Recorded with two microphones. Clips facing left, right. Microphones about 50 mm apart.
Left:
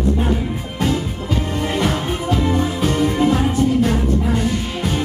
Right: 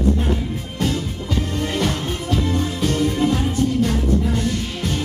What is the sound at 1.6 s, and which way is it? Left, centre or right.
Music, centre.